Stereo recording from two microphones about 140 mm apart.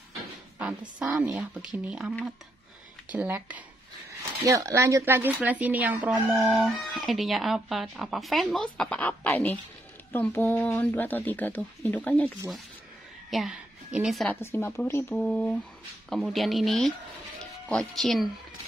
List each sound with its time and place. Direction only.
0.6 s speech: 10° right (ahead or behind)
4.5 s speech: 20° right (ahead or behind)
6.4 s speech: centre (ahead or behind)
13.3 s a woman's voice: centre (ahead or behind)
14.3 s speech: 15° left (ahead or behind); by 18.3 s centre (ahead or behind)